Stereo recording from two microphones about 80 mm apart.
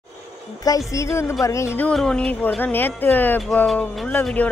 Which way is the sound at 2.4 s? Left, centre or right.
Left.